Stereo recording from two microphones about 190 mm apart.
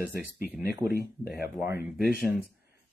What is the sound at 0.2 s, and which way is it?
Speech, 10° right (ahead or behind).